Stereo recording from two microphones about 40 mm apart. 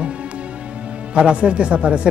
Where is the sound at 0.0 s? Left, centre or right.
Right.